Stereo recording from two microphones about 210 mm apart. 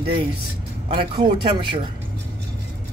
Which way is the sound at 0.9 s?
25° right (ahead or behind).